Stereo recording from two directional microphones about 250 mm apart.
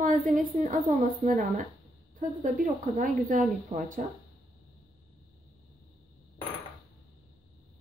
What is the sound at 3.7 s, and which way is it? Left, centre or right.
Speech, centre.